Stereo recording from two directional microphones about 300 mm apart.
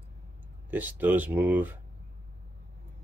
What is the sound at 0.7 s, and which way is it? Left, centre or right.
Speech, centre.